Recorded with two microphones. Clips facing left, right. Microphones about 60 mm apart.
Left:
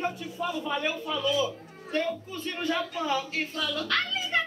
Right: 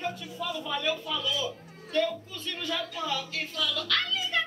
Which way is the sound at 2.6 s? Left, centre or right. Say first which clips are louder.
Left 4 dB; left.